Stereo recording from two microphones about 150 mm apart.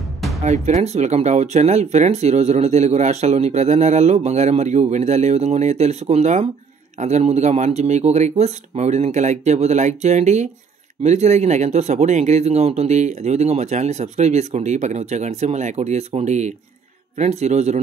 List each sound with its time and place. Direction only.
0.4 s speech: 45° right (ahead or behind)